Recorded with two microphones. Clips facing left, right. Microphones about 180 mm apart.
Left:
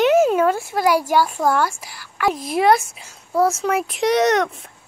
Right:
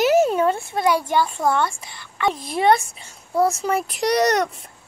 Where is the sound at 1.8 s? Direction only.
25° right (ahead or behind).